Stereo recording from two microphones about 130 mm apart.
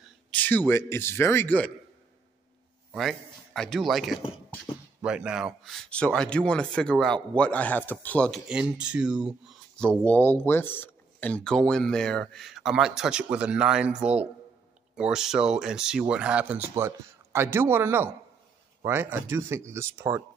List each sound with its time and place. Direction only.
0.3 s a man's voice: 15° left (ahead or behind)
2.9 s speech: centre (ahead or behind)
4.2 s speech: 40° left (ahead or behind)
5.0 s a man's voice: 5° right (ahead or behind); by 8.3 s 15° left (ahead or behind)
8.3 s speech: 5° right (ahead or behind)
9.8 s speech: 10° left (ahead or behind); by 20.2 s 20° right (ahead or behind)